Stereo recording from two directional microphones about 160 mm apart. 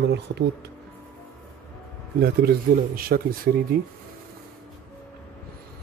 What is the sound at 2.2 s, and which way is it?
Speech, 85° right.